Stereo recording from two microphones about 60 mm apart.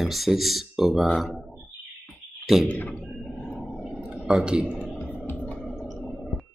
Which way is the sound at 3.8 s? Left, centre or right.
Centre.